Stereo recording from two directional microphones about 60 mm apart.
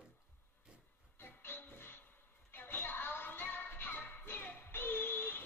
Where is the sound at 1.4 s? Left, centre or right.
Left.